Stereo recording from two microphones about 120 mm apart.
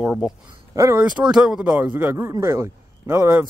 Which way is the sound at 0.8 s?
25° right (ahead or behind).